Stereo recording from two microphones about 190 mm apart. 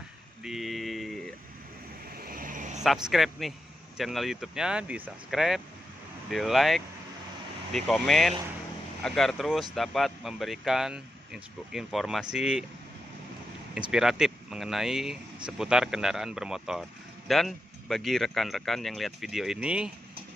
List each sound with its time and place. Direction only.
0.4 s a sound: centre (ahead or behind)
2.1 s vehicle: 50° right (ahead or behind)
2.8 s speech: centre (ahead or behind)
13.7 s speech: 5° right (ahead or behind)